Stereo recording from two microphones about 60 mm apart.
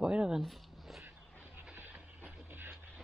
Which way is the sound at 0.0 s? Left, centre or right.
Centre.